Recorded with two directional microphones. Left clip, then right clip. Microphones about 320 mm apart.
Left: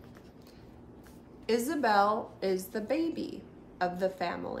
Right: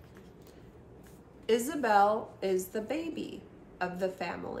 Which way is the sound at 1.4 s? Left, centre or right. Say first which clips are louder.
Even; centre.